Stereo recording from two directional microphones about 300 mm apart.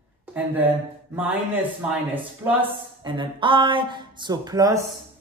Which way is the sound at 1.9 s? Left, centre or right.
Centre.